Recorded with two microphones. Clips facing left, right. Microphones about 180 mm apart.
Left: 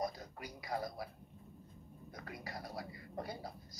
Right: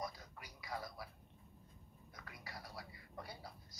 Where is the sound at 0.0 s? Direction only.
45° left (ahead or behind).